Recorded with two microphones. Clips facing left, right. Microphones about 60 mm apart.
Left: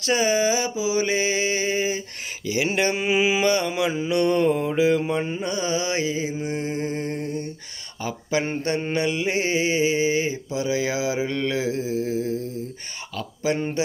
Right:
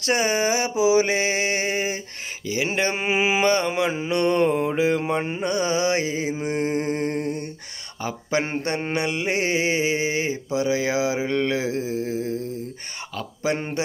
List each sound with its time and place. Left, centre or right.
0.0 s mantra: right
0.8 s mantra: right
2.4 s speech: right
3.0 s mantra: right
13.1 s speech: right